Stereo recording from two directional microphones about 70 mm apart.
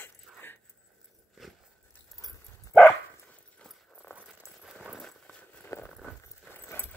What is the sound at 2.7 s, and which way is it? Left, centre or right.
Dog, centre.